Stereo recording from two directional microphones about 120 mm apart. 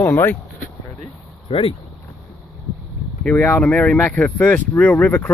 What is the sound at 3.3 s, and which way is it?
Speech, 15° left (ahead or behind).